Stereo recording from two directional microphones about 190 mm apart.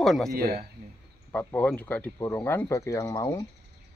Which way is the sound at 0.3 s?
55° right (ahead or behind).